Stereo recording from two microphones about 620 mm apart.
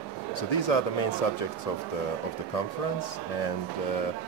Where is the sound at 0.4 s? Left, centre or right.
Left.